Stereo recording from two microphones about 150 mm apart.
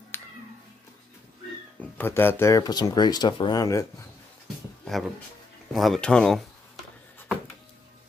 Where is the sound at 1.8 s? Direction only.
15° left (ahead or behind).